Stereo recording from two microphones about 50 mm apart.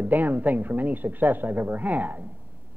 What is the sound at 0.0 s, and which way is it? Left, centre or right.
A woman's voice, right.